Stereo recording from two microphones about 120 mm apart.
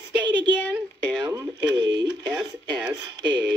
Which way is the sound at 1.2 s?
30° right (ahead or behind).